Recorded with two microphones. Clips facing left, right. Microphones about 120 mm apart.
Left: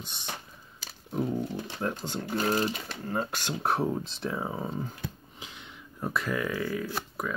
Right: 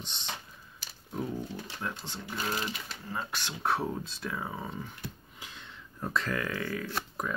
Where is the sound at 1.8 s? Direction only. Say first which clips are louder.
Left 8 dB; 45° left (ahead or behind).